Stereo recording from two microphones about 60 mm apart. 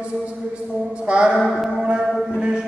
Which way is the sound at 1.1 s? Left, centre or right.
Centre.